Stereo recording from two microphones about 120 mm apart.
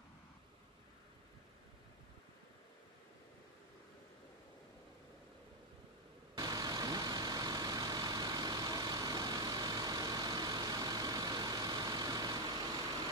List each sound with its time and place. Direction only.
6.3 s vehicle: 35° right (ahead or behind)